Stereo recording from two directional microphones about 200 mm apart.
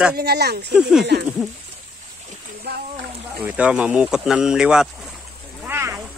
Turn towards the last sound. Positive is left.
turn(degrees=-10)  # may be behind; listen again after turning